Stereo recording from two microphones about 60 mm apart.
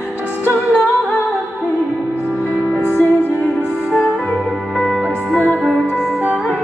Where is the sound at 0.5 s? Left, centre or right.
Left.